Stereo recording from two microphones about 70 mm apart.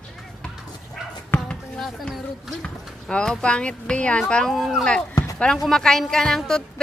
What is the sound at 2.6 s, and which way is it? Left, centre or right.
A child's voice, centre.